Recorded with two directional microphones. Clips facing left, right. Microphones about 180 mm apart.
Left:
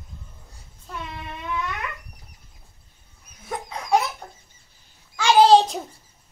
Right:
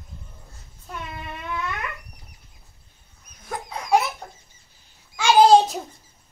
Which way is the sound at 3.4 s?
Centre (ahead or behind).